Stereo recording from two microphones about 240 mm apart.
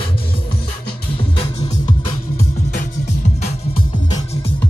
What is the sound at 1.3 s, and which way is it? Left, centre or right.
Music, left.